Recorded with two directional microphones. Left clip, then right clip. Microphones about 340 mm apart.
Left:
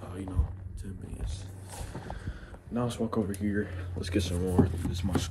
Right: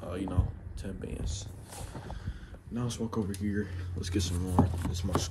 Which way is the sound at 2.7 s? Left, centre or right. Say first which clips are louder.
Left 4 dB; centre.